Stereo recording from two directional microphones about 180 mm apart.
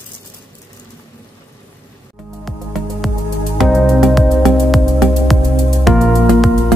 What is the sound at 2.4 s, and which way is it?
Music, centre (ahead or behind).